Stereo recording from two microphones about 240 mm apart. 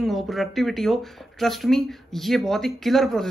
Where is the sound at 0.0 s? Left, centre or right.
Centre.